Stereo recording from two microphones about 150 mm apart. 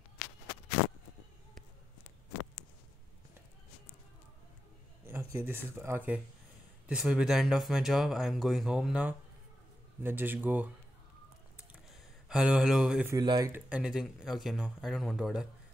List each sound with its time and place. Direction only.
5.0 s speech: 15° right (ahead or behind)
12.3 s speech: 5° right (ahead or behind)
13.1 s speech: 25° right (ahead or behind)
13.5 s speech: 10° right (ahead or behind)